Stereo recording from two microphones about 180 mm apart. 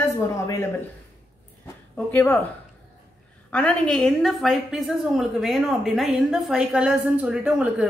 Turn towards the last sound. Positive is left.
turn(degrees=-5)  # may be behind; listen again after turning